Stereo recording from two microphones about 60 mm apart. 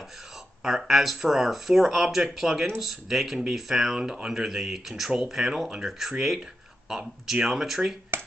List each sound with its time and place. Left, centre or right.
0.7 s speech: centre
8.1 s finger snapping: right